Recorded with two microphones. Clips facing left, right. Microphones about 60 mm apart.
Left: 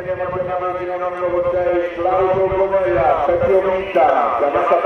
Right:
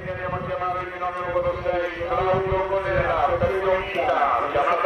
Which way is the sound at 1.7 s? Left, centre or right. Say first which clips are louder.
Left 7 dB; centre.